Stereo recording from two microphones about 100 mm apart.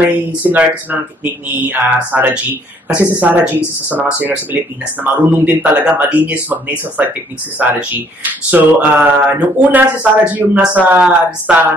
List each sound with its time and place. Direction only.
0.0 s speech: 15° right (ahead or behind)